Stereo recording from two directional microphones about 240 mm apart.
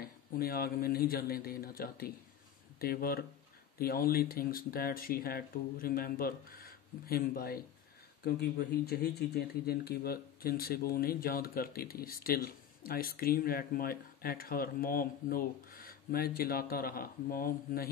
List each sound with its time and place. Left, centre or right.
0.0 s speech: left